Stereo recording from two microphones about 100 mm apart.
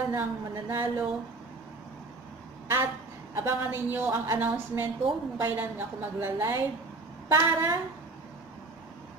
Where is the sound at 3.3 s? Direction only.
25° right (ahead or behind).